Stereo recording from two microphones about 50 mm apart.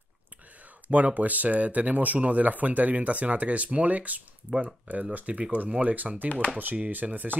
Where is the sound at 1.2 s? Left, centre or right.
Right.